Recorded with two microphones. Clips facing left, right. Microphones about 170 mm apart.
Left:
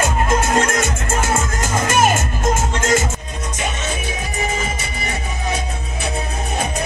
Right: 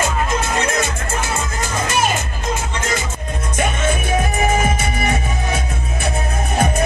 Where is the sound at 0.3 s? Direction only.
50° left (ahead or behind).